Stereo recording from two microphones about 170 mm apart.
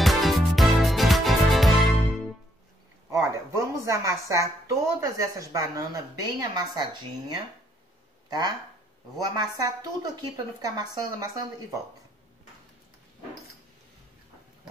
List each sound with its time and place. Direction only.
0.0 s music: centre (ahead or behind)
3.1 s a woman's voice: 20° right (ahead or behind)